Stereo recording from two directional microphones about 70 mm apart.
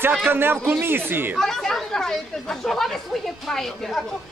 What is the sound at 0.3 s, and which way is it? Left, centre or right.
Speech, right.